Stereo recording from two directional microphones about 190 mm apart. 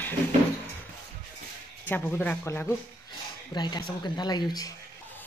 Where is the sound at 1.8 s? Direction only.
10° left (ahead or behind).